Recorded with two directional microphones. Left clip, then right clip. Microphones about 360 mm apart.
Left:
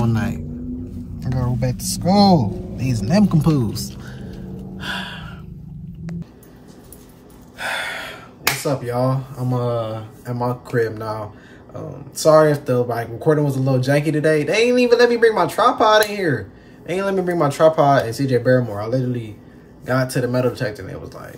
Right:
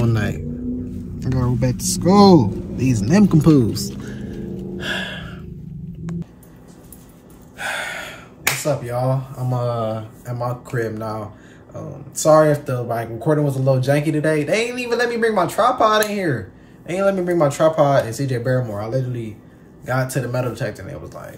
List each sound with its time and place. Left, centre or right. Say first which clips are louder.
1.2 s a man's voice: right 2 dB; centre
7.5 s speech: left 1 dB; centre